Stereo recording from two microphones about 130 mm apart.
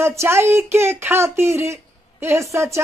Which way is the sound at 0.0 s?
20° right (ahead or behind).